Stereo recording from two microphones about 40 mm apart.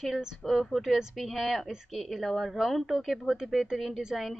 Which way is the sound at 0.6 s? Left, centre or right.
Centre.